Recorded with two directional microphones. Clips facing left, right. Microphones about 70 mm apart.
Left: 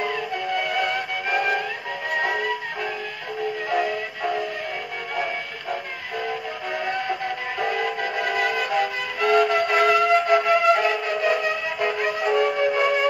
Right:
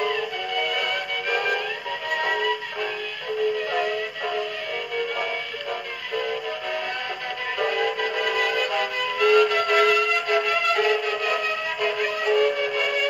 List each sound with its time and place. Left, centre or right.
8.3 s music: left